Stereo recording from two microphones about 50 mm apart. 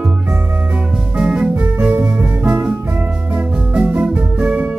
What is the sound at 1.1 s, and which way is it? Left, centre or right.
Music, centre.